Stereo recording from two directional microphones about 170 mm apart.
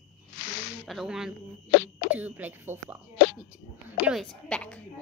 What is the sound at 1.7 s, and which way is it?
Speech, 65° left (ahead or behind).